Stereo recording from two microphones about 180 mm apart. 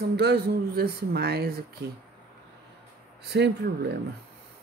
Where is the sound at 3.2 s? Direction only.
65° right (ahead or behind).